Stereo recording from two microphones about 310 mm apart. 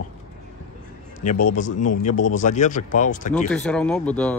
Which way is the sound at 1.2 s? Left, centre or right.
Left.